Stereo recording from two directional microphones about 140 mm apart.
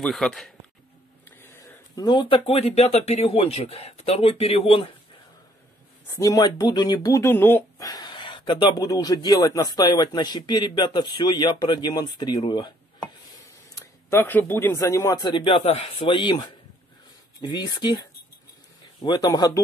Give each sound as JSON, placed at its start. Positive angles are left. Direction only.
{"t": 0.0, "sound": "speech", "side_deg": 5}
{"t": 1.4, "sound": "a sound", "side_deg": 15}
{"t": 2.0, "sound": "speech", "side_deg": 30}
{"t": 6.0, "sound": "speech", "side_deg": 25}
{"t": 7.8, "sound": "a sound", "side_deg": 30}
{"t": 8.8, "sound": "speech", "side_deg": 25}
{"t": 14.1, "sound": "speech", "side_deg": 15}
{"t": 19.0, "sound": "speech", "side_deg": 30}